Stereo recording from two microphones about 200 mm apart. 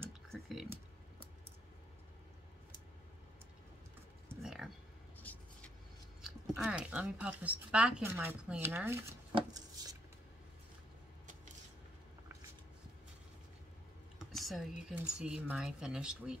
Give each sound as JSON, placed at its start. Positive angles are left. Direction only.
{"t": 0.3, "sound": "typing", "side_deg": 0}
{"t": 4.4, "sound": "a sound", "side_deg": 0}
{"t": 5.2, "sound": "vehicle", "side_deg": 10}
{"t": 6.2, "sound": "speech", "side_deg": 0}
{"t": 9.3, "sound": "a sound", "side_deg": -20}
{"t": 14.1, "sound": "computer keyboard", "side_deg": 0}
{"t": 14.9, "sound": "speech", "side_deg": -5}